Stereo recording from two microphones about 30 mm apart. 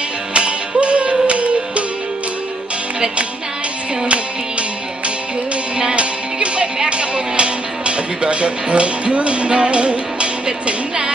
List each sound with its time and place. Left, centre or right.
0.3 s music: right
4.1 s music: right